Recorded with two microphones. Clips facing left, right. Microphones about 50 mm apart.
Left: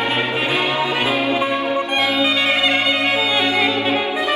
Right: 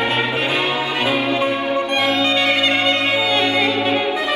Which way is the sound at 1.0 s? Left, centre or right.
Centre.